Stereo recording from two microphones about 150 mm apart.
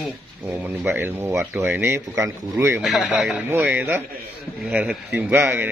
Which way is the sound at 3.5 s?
15° right (ahead or behind).